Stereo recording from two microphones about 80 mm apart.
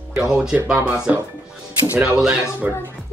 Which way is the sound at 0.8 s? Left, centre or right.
Right.